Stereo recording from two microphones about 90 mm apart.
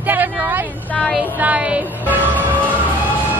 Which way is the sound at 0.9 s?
5° left (ahead or behind).